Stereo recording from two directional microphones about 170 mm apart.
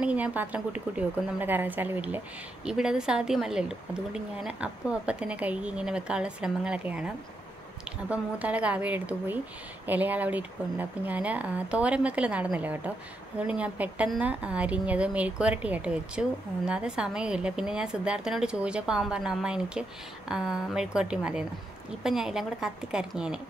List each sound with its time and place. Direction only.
0.0 s speech: 10° right (ahead or behind)
8.1 s a woman's voice: 10° right (ahead or behind)